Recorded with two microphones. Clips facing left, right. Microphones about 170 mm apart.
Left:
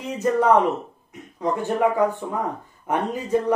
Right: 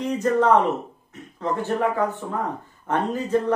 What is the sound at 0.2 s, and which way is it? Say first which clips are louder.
Speech: left 1 dB; 10° left (ahead or behind).